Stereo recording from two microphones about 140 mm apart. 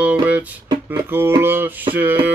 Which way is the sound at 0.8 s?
15° right (ahead or behind).